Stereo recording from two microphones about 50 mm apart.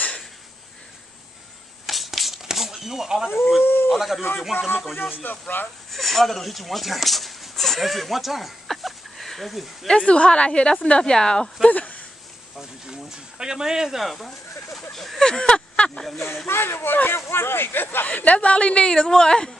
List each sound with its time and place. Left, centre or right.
1.9 s a sound: centre
3.6 s a sound: left
3.9 s speech: centre
4.6 s speech: left
5.9 s a sound: centre
9.8 s speech: left
11.6 s speech: left
13.4 s speech: centre
15.2 s a sound: centre
16.4 s speech: left
18.0 s speech: left
18.9 s a woman's voice: centre